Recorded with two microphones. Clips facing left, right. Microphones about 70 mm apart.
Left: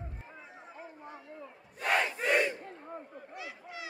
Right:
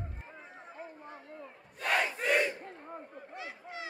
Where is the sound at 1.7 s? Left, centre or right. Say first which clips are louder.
Left 1 dB; centre.